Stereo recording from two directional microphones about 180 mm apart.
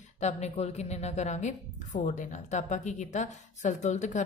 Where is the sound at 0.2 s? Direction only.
35° left (ahead or behind).